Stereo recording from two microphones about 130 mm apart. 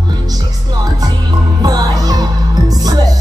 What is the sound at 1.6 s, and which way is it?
Music, 30° right (ahead or behind).